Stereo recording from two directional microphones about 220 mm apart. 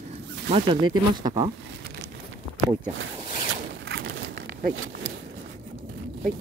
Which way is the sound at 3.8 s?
50° right (ahead or behind).